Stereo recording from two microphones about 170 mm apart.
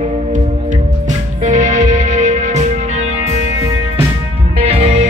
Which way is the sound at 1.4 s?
45° right (ahead or behind).